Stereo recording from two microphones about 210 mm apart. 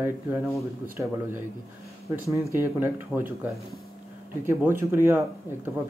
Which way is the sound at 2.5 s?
10° right (ahead or behind).